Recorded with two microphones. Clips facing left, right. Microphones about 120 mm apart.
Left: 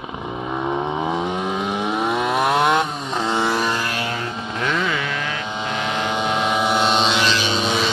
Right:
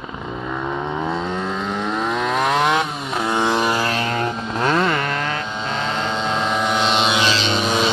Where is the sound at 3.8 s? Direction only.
55° right (ahead or behind).